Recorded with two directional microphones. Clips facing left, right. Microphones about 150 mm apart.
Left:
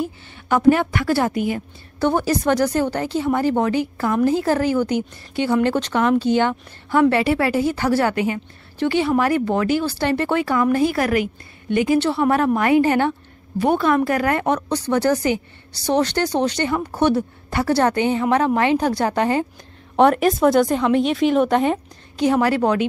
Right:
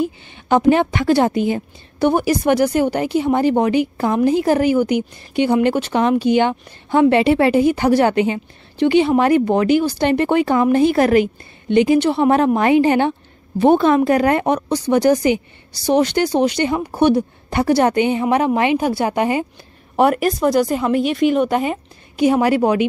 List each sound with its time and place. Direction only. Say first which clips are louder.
0.0 s a woman's voice: right 5 dB; 20° right (ahead or behind)
2.0 s a woman's voice: right 3 dB; 15° right (ahead or behind)
20.0 s a woman's voice: left 1 dB; 5° right (ahead or behind)
22.2 s speech: right 3 dB; 15° right (ahead or behind)